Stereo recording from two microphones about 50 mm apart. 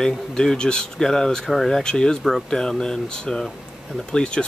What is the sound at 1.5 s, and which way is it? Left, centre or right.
Speech, centre.